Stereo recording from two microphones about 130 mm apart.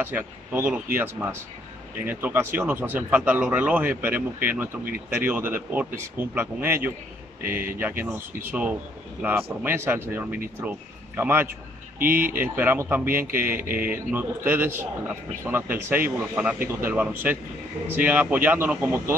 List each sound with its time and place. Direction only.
0.0 s speech: 15° right (ahead or behind)